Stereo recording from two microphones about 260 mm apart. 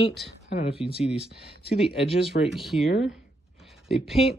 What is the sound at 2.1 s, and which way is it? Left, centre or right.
Speech, left.